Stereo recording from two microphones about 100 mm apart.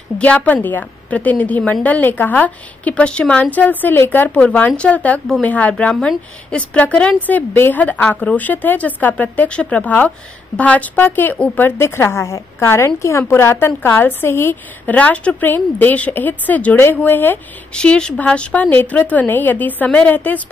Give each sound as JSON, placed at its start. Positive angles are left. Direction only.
{"t": 0.2, "sound": "a woman's voice", "side_deg": 15}
{"t": 17.7, "sound": "a woman's voice", "side_deg": 10}